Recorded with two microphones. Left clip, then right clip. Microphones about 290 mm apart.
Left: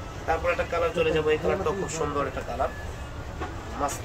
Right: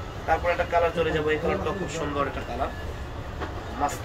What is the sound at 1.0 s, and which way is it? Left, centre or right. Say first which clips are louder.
Speech: left 1 dB; centre.